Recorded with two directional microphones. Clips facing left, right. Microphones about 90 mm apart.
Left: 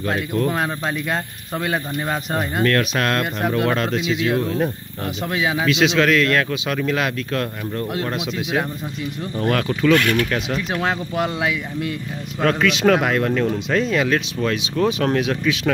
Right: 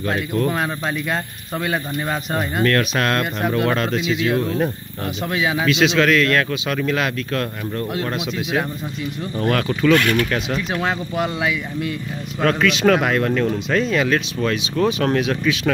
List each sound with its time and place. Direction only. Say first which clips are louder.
0.0 s speech: even; 5° left (ahead or behind)
0.5 s speech: even; 25° left (ahead or behind)
2.6 s speech: right 1 dB; centre (ahead or behind)
9.9 s speech: right 1 dB; 35° right (ahead or behind)
11.2 s speech: even; 30° left (ahead or behind)
12.4 s speech: even; 10° left (ahead or behind)